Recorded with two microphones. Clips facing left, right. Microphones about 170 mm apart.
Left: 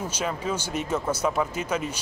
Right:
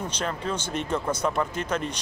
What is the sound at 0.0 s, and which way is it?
Speech, 5° left (ahead or behind).